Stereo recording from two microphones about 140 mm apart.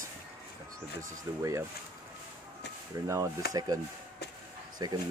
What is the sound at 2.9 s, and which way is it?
Speech, 25° right (ahead or behind).